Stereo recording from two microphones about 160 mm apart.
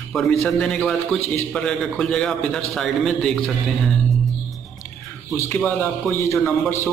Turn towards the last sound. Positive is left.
turn(degrees=15)  # may be behind; listen again after turning